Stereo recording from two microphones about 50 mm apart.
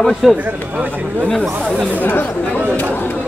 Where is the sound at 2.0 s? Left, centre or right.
Left.